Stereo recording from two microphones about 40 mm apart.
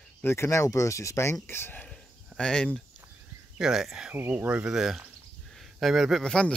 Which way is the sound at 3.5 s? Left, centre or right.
Centre.